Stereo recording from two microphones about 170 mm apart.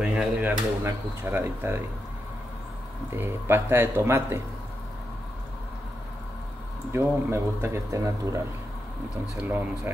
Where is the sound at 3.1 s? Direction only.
15° right (ahead or behind).